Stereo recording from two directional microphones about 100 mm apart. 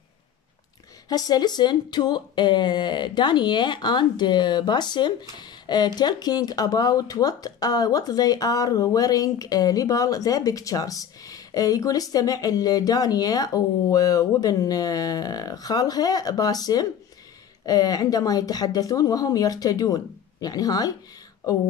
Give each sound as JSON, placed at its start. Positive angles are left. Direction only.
{"t": 1.0, "sound": "speech", "side_deg": 40}